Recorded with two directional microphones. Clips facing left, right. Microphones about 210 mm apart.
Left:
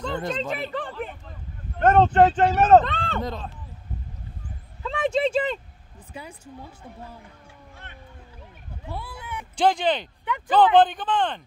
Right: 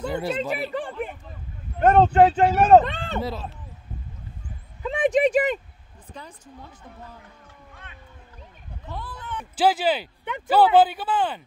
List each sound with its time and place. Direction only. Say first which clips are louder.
0.0 s speech: right 2 dB; 10° right (ahead or behind)
4.8 s speech: right 3 dB; 15° right (ahead or behind)
6.1 s speech: left 3 dB; 10° left (ahead or behind)
8.8 s a sound: even; 10° left (ahead or behind)
9.6 s speech: even; 5° right (ahead or behind)